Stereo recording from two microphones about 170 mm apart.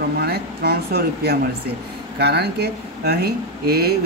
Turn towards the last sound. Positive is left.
turn(degrees=-65)  # may be behind; listen again after turning